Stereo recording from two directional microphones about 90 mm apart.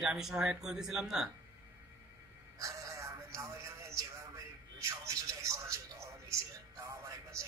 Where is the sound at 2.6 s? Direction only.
40° right (ahead or behind).